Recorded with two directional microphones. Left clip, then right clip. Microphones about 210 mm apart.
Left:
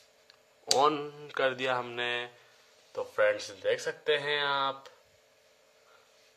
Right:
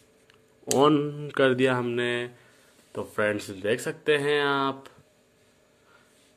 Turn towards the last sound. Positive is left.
turn(degrees=-30)  # may be behind; listen again after turning